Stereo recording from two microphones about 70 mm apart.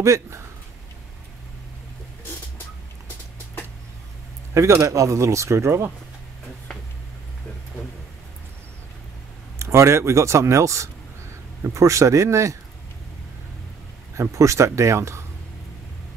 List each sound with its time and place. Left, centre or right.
0.0 s speech: right
4.6 s speech: right
9.6 s speech: right
14.1 s speech: right